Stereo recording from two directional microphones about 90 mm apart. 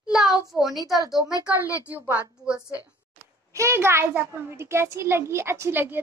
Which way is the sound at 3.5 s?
30° right (ahead or behind).